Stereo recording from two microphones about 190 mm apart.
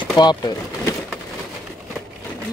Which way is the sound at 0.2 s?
25° left (ahead or behind).